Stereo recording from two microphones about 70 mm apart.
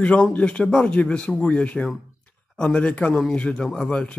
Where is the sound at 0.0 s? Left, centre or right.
Centre.